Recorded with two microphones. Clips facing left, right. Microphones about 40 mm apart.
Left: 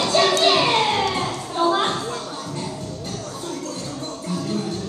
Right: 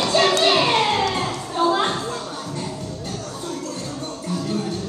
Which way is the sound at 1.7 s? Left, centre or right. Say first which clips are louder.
Even; right.